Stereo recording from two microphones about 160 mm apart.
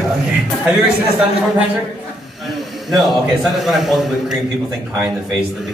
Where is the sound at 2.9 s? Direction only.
Centre (ahead or behind).